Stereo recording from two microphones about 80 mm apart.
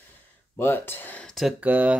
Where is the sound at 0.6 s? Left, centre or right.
Left.